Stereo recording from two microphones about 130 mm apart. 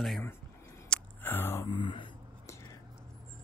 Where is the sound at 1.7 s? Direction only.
40° left (ahead or behind).